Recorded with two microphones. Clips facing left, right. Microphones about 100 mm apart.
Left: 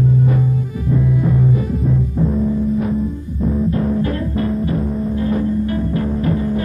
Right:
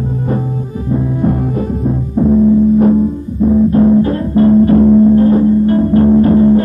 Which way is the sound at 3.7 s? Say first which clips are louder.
Right 9 dB; 35° right (ahead or behind).